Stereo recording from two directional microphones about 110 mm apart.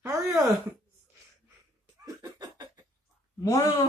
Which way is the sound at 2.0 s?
35° right (ahead or behind).